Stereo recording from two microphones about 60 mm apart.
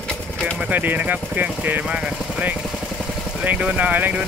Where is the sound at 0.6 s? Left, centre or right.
Right.